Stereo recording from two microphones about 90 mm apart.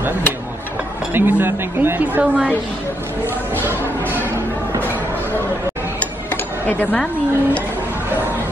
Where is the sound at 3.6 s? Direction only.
25° right (ahead or behind).